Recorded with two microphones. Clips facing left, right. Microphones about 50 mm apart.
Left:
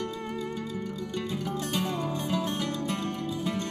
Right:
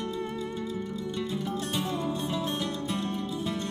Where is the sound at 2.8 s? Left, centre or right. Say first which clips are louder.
Even; left.